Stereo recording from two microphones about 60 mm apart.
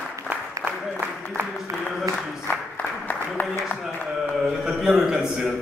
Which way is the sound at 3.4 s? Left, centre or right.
Left.